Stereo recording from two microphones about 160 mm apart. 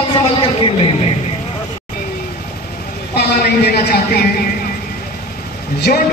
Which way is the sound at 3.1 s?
90° left.